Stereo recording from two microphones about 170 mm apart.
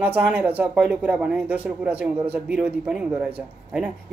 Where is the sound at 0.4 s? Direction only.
10° right (ahead or behind).